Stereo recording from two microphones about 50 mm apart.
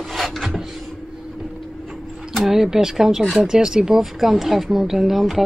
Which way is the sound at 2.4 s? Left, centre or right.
Centre.